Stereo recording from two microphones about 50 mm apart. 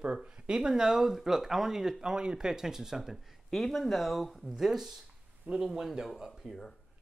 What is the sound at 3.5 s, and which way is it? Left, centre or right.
Speech, centre.